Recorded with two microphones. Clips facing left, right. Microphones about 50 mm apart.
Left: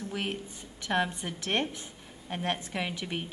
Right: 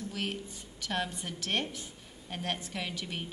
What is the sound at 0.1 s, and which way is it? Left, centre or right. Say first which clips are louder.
A woman's voice: left 2 dB; centre.